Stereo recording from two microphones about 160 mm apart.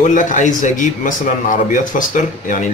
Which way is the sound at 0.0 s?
50° left (ahead or behind).